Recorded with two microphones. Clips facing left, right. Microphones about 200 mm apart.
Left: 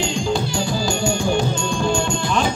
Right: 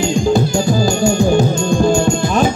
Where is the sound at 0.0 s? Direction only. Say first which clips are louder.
Right 7 dB; 40° right (ahead or behind).